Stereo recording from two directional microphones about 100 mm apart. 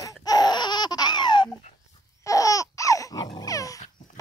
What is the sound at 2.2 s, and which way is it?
Babbling, 35° left (ahead or behind).